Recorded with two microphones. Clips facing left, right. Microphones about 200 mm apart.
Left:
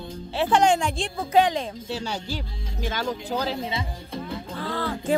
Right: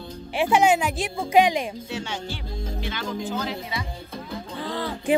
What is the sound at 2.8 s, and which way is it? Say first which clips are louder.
Speech: left 3 dB; 40° left (ahead or behind).